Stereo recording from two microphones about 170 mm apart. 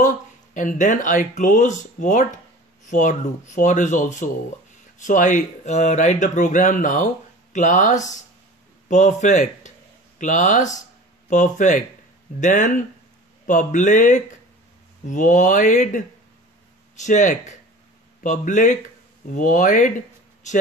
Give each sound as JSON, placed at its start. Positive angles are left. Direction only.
{"t": 0.6, "sound": "speech", "side_deg": 50}